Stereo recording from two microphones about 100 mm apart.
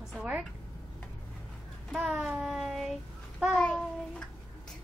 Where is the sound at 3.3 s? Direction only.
Centre (ahead or behind).